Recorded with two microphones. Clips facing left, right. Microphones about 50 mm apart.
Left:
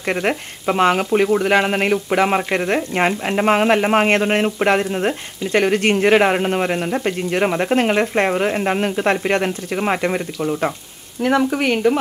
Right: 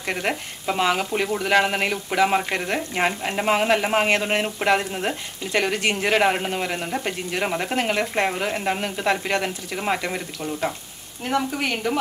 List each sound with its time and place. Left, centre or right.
0.0 s speech: centre
3.9 s speech: left
4.2 s speech: centre